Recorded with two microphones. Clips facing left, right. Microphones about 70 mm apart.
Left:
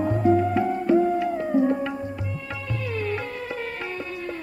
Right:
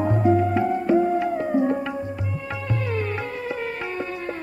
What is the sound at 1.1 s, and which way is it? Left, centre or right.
Music, right.